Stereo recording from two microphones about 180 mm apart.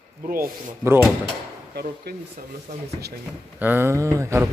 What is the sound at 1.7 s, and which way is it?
Speech, 60° right (ahead or behind).